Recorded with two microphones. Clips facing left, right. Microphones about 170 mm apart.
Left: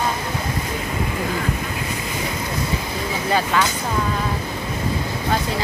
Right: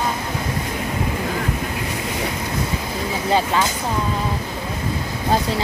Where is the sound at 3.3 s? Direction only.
25° right (ahead or behind).